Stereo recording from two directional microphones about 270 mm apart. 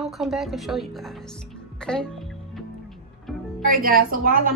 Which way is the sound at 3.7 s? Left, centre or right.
Right.